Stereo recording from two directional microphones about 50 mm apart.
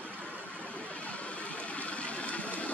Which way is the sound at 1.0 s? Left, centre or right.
Left.